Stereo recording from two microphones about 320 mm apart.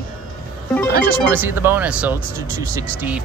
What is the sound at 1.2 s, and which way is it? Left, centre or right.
Speech, centre.